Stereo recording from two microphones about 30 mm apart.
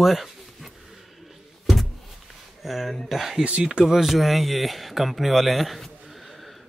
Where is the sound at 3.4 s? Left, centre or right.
Right.